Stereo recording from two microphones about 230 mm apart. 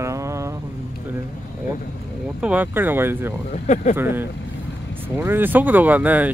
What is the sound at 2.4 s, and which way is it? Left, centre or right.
Speech, centre.